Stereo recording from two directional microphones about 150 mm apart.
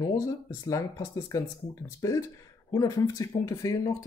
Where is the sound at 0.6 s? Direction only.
25° left (ahead or behind).